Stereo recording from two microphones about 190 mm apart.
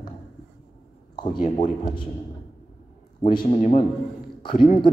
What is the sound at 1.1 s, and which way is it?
Speech, 25° left (ahead or behind).